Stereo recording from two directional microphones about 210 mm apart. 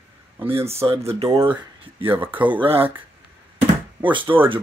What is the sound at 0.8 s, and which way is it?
Speech, 30° right (ahead or behind).